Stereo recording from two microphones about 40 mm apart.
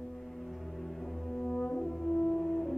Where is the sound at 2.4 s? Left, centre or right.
Centre.